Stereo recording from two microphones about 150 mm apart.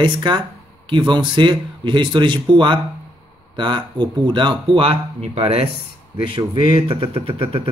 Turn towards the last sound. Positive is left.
turn(degrees=-40)  # may be behind; listen again after turning